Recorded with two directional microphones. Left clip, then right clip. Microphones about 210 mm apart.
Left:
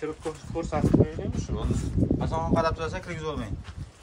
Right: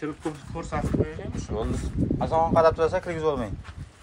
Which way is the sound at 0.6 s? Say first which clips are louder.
Left 3 dB; 30° left (ahead or behind).